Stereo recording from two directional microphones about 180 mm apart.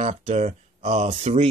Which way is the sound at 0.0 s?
35° right (ahead or behind).